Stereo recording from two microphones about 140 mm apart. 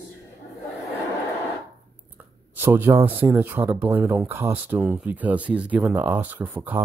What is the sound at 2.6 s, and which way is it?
Speech, 15° right (ahead or behind).